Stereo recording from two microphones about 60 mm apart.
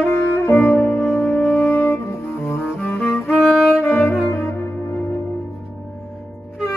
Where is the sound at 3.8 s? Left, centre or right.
Left.